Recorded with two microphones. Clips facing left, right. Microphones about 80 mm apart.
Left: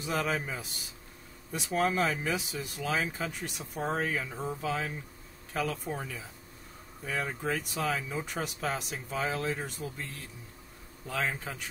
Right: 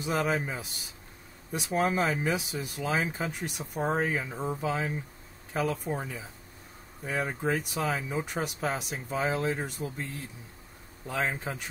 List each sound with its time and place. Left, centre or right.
0.0 s speech: centre
11.1 s speech: centre